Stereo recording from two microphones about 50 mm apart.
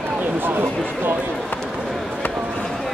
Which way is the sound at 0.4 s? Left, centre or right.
Right.